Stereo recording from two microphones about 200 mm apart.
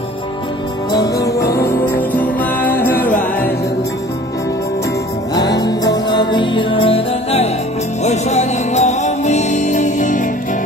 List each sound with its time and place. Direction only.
0.9 s music: 15° left (ahead or behind)
5.3 s music: 20° left (ahead or behind); by 10.2 s 40° left (ahead or behind)